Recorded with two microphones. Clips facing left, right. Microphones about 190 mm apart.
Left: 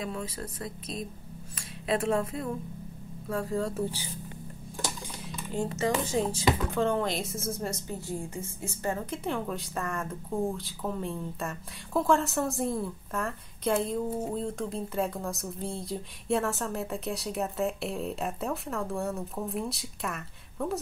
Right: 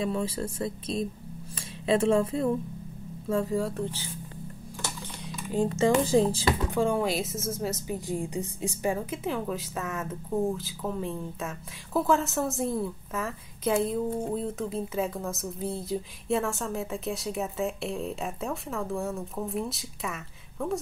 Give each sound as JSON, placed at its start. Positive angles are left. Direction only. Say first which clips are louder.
{"t": 0.0, "sound": "speech", "louder": "right 6 dB", "side_deg": -30}
{"t": 3.7, "sound": "speech", "louder": "left 1 dB", "side_deg": 10}
{"t": 5.5, "sound": "speech", "louder": "right 5 dB", "side_deg": -20}
{"t": 6.0, "sound": "speech", "louder": "right 6 dB", "side_deg": -30}
{"t": 6.7, "sound": "speech", "louder": "right 2 dB", "side_deg": -10}
{"t": 7.9, "sound": "speech", "louder": "right 4 dB", "side_deg": -15}